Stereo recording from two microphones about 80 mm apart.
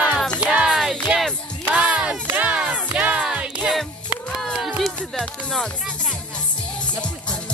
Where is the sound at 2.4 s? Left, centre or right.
Centre.